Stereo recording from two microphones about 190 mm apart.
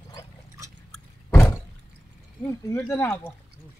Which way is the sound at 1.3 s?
10° left (ahead or behind).